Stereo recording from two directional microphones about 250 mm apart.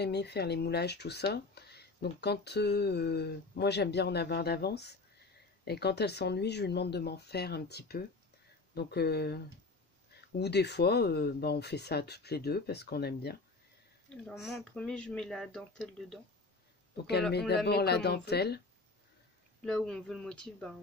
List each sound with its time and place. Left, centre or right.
0.0 s speech: left
10.4 s speech: left
14.0 s speech: centre
17.6 s speech: left
19.6 s speech: centre